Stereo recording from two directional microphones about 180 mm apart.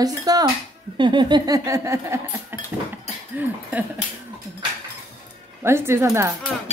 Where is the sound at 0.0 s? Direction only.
20° right (ahead or behind).